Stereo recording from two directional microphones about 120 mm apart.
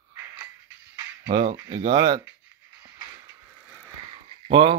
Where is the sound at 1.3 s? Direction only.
45° right (ahead or behind).